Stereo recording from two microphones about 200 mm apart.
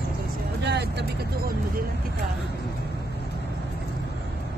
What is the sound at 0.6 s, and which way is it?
Vehicle, 55° right (ahead or behind).